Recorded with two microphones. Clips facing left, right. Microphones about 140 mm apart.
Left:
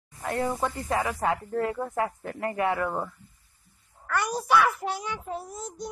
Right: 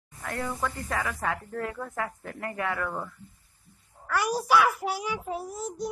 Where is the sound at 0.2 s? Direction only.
25° left (ahead or behind).